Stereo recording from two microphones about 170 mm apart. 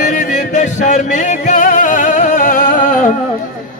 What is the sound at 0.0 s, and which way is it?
Music, 50° left (ahead or behind).